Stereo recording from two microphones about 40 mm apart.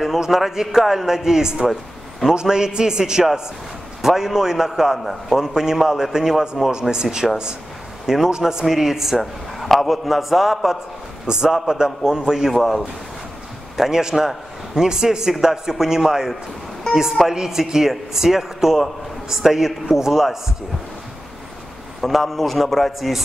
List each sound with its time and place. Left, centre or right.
0.0 s a man's voice: centre
5.4 s a man's voice: centre
9.2 s a man's voice: centre
11.2 s a man's voice: right
12.5 s a man's voice: centre
13.7 s a man's voice: centre
17.3 s a man's voice: centre
22.0 s a man's voice: centre